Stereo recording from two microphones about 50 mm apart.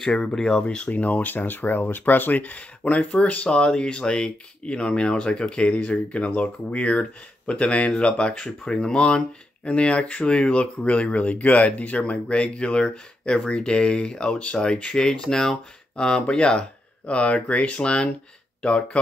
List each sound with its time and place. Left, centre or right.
0.1 s speech: centre
0.7 s speech: left